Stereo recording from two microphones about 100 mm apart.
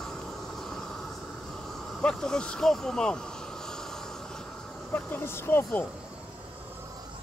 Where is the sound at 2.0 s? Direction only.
5° left (ahead or behind).